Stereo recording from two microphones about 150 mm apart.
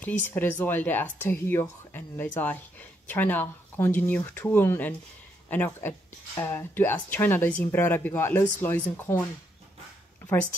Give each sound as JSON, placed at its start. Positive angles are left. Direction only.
{"t": 0.0, "sound": "speech", "side_deg": 10}